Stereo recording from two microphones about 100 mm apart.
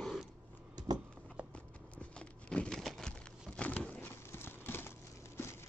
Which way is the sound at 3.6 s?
15° left (ahead or behind).